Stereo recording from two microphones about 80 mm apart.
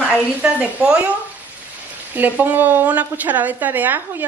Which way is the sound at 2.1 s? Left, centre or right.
Right.